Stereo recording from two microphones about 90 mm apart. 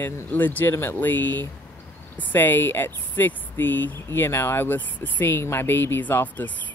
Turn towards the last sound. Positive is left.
turn(degrees=20)  # may be behind; listen again after turning